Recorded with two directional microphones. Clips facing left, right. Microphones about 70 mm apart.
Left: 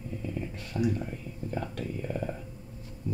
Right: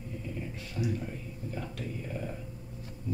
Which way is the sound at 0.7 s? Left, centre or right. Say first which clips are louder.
Left 6 dB; left.